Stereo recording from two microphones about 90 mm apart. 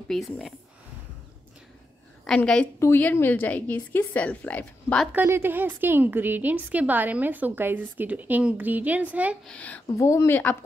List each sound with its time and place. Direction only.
0.1 s speech: centre (ahead or behind)
2.2 s a woman's voice: 10° left (ahead or behind)
2.8 s a woman's voice: 20° left (ahead or behind)
5.1 s a woman's voice: 25° right (ahead or behind)
9.5 s a woman's voice: 15° left (ahead or behind)
9.9 s speech: 35° left (ahead or behind)
10.3 s a woman's voice: 15° left (ahead or behind)